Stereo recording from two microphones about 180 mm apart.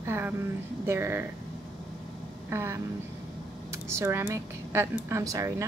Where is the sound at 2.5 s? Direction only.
15° right (ahead or behind).